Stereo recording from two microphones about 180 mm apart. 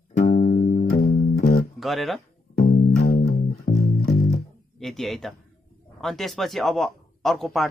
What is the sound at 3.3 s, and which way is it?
Music, 45° left (ahead or behind).